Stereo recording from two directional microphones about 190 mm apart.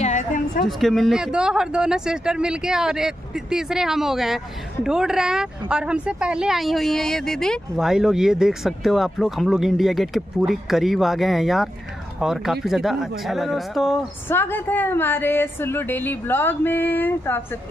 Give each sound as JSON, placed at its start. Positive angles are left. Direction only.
{"t": 0.0, "sound": "a sound", "side_deg": 40}
{"t": 0.7, "sound": "speech", "side_deg": 0}
{"t": 14.3, "sound": "a woman's voice", "side_deg": 10}